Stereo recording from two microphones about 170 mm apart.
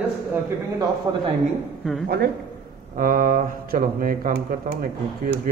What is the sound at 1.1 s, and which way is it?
Speech, 25° right (ahead or behind).